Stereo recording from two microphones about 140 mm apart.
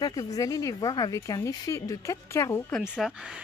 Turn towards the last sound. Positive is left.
turn(degrees=-5)  # may be behind; listen again after turning